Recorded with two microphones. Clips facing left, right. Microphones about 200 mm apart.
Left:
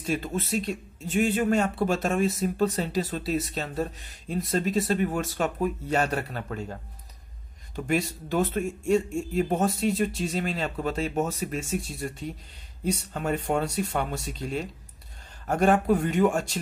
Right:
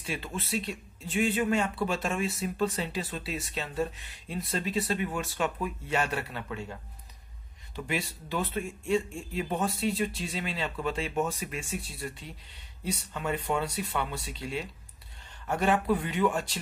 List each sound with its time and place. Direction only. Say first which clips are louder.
0.0 s speech: left 7 dB; 45° left (ahead or behind)